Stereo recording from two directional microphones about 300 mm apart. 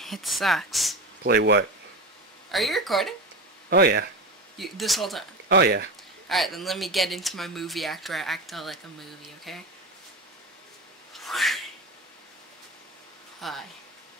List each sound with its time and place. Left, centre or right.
0.0 s speech: centre
1.2 s speech: right
2.5 s speech: centre
3.7 s speech: right
4.6 s speech: centre
5.5 s speech: right
6.2 s speech: centre
11.1 s a sound: centre
13.4 s speech: centre